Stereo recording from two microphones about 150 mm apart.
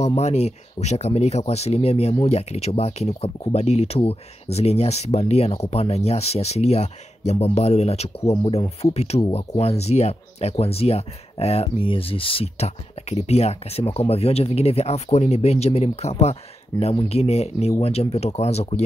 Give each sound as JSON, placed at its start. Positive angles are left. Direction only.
{"t": 0.0, "sound": "speech", "side_deg": 45}